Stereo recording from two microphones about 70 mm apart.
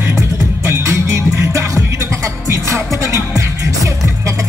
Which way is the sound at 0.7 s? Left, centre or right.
Right.